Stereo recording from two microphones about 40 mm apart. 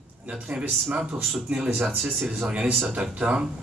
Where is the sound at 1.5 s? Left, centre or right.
Right.